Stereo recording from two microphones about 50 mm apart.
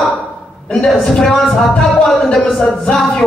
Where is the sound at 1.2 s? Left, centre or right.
Centre.